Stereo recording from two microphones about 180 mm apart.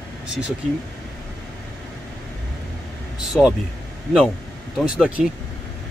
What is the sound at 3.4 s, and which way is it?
Speech, 5° left (ahead or behind).